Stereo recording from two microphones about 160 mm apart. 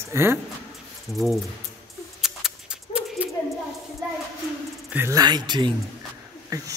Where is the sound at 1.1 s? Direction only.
Centre (ahead or behind).